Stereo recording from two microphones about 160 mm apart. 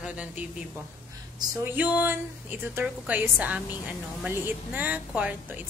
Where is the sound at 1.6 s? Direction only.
10° right (ahead or behind).